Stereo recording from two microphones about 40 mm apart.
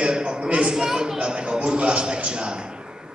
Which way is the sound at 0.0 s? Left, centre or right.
Right.